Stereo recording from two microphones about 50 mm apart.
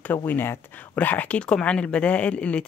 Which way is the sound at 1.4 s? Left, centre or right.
Left.